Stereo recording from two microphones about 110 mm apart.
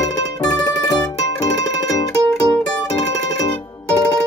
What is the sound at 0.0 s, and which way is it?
Mandolin, 35° left (ahead or behind).